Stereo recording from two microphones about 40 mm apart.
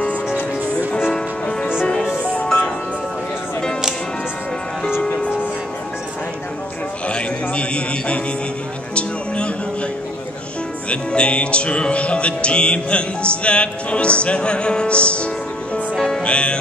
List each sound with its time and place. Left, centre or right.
7.1 s music: left
10.9 s music: left